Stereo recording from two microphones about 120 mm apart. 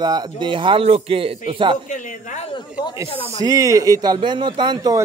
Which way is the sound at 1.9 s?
90° left.